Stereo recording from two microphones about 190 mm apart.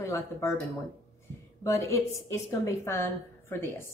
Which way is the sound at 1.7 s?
15° left (ahead or behind).